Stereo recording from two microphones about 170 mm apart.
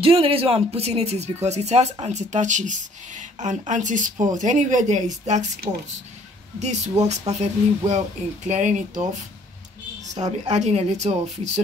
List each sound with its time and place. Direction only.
0.0 s speech: 35° right (ahead or behind)
5.7 s speech: 25° right (ahead or behind)
6.6 s speech: 40° right (ahead or behind)
10.4 s speech: 40° right (ahead or behind)